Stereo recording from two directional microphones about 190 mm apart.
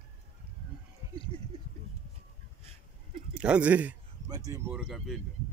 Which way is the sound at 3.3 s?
5° right (ahead or behind).